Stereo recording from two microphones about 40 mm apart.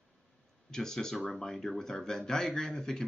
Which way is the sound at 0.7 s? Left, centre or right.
Centre.